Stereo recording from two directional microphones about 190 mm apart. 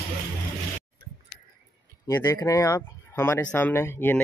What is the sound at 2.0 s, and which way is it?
Speech, 15° left (ahead or behind).